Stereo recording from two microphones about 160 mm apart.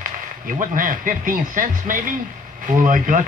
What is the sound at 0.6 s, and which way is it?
A man's voice, 55° right (ahead or behind).